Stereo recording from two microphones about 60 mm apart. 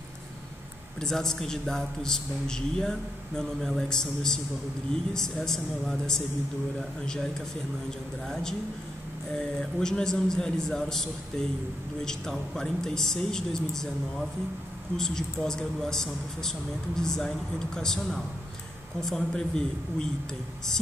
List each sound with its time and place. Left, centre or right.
1.0 s speech: centre
15.0 s speech: centre